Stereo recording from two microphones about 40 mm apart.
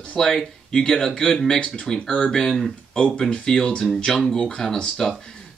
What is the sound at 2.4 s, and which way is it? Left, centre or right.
Speech, centre.